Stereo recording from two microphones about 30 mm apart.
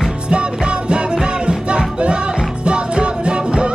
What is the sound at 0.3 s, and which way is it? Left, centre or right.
Music, right.